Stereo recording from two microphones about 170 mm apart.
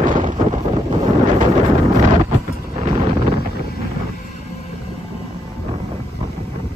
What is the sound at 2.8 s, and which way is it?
Wind noise, 35° right (ahead or behind).